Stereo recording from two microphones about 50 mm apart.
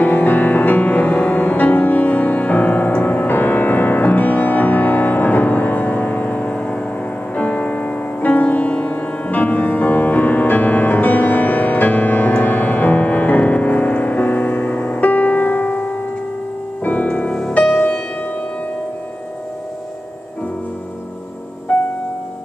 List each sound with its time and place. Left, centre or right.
0.0 s music: left
17.3 s music: centre
21.7 s music: left